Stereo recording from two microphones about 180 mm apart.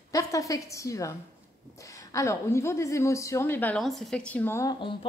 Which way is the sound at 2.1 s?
15° left (ahead or behind).